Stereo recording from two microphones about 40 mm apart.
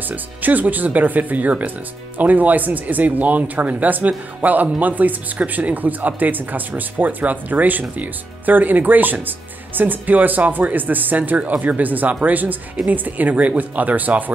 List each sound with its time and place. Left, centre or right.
0.1 s speech: right